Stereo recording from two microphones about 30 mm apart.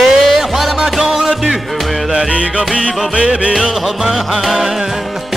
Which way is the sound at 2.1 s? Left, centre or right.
Right.